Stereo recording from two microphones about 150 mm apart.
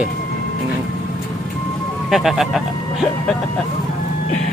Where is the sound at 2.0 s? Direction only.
Centre (ahead or behind).